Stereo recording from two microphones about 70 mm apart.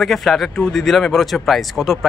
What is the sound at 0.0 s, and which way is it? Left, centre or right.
Speech, centre.